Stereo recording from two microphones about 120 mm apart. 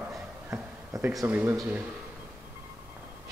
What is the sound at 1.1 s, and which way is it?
Speech, centre (ahead or behind).